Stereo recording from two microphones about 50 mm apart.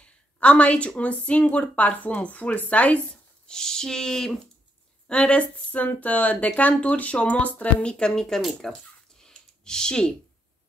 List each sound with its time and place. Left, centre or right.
0.0 s speech: left
3.4 s speech: centre
5.0 s speech: left
8.1 s speech: centre
9.2 s a sound: centre